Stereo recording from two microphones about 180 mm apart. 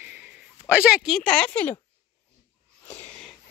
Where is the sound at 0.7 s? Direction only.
5° right (ahead or behind).